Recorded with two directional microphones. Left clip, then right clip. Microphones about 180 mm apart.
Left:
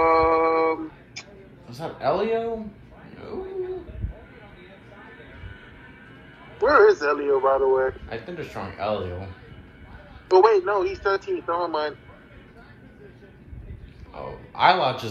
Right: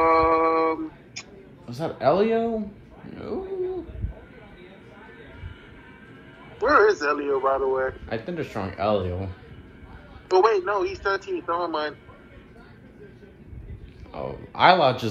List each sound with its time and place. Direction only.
0.0 s music: 5° left (ahead or behind)
1.7 s speech: 45° right (ahead or behind)
6.6 s a man's voice: 5° left (ahead or behind)
8.1 s speech: 40° right (ahead or behind)
10.2 s a man's voice: 5° left (ahead or behind)
14.1 s a sound: 45° right (ahead or behind)